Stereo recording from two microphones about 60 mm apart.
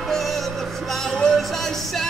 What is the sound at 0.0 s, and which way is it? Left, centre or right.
Music, centre.